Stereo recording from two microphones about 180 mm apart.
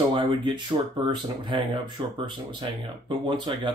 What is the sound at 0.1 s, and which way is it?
Speech, 25° right (ahead or behind).